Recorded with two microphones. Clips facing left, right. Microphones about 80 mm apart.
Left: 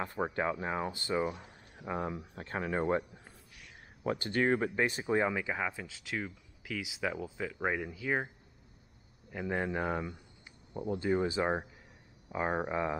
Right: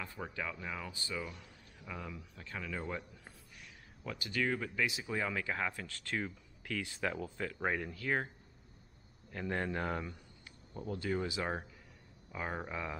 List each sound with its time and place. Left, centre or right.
0.0 s speech: left
4.0 s speech: left
5.3 s speech: centre
9.3 s speech: centre
12.3 s speech: left